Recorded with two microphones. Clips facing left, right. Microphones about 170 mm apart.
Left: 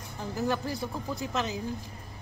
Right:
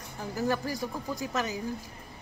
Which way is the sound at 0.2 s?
20° left (ahead or behind).